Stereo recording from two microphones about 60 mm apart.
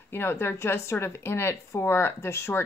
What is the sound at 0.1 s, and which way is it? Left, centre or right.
Speech, left.